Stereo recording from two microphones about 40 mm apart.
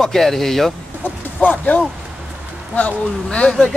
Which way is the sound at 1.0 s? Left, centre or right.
Left.